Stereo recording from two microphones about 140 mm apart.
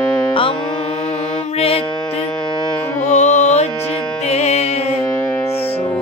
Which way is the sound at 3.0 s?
55° left (ahead or behind).